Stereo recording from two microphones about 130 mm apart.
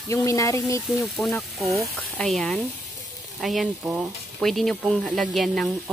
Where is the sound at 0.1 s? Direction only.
25° left (ahead or behind).